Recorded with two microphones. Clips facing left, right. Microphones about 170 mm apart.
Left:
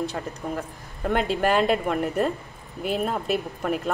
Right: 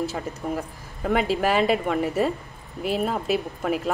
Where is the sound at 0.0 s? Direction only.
Centre (ahead or behind).